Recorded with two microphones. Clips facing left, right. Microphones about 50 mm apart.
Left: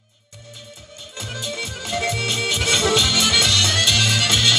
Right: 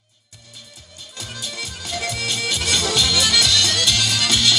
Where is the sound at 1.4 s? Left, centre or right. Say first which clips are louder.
Left 3 dB; left.